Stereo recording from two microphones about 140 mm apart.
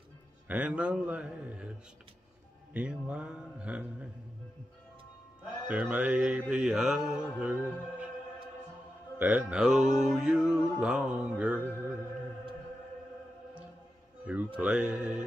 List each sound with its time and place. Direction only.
0.5 s speech: 10° right (ahead or behind)
2.7 s speech: 10° right (ahead or behind)
5.7 s music: 10° right (ahead or behind)
7.3 s speech: 10° right (ahead or behind)
9.2 s music: 10° right (ahead or behind)
10.8 s speech: 5° right (ahead or behind)
11.7 s music: 15° right (ahead or behind)
14.3 s speech: 10° right (ahead or behind)